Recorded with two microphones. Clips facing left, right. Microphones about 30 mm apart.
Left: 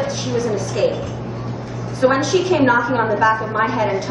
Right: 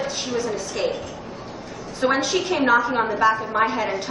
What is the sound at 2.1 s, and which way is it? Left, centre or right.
A woman's voice, centre.